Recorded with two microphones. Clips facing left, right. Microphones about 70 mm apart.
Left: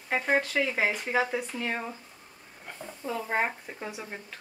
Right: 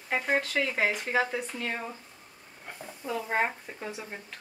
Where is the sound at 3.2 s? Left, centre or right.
Centre.